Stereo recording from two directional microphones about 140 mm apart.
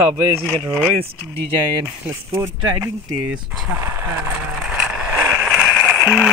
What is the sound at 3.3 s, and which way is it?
Speech, 5° right (ahead or behind).